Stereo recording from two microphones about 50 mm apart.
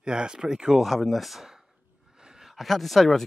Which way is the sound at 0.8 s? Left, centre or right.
Centre.